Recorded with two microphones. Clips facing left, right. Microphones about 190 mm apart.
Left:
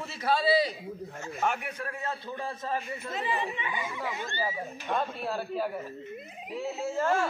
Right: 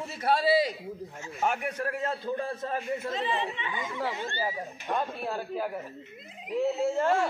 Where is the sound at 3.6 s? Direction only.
10° left (ahead or behind).